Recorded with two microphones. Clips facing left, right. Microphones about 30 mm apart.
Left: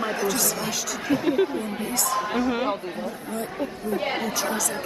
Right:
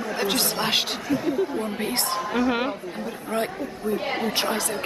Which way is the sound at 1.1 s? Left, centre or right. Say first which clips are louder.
Left 2 dB; left.